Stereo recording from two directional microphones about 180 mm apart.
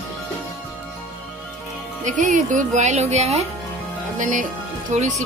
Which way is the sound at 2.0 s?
45° right (ahead or behind).